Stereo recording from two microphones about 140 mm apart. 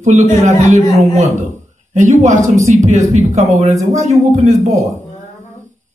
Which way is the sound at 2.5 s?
20° right (ahead or behind).